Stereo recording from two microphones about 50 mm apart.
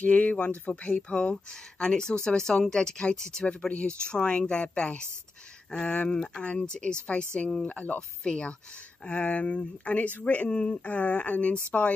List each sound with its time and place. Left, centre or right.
0.0 s speech: left
1.1 s speech: centre
11.7 s speech: centre